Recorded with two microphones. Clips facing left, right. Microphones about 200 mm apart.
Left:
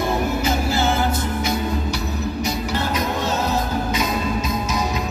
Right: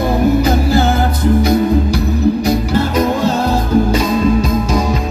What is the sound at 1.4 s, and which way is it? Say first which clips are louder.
Music: right 10 dB; 35° right (ahead or behind).